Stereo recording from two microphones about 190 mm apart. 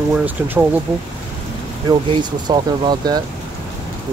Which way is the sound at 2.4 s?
20° right (ahead or behind).